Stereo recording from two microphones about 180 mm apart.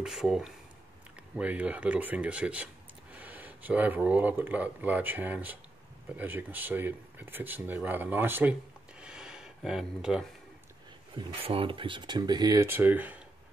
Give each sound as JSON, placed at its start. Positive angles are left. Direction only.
{"t": 0.0, "sound": "speech", "side_deg": -5}
{"t": 9.0, "sound": "a sound", "side_deg": -5}
{"t": 11.1, "sound": "speech", "side_deg": -30}